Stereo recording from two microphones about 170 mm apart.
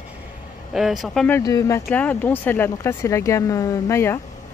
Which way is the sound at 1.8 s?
10° left (ahead or behind).